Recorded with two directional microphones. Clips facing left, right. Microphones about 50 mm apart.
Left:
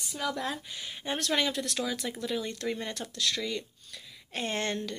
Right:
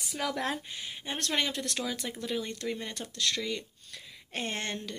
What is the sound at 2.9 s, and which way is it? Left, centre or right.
Speech, right.